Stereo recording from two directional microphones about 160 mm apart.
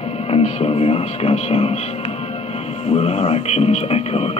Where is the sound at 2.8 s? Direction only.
40° left (ahead or behind).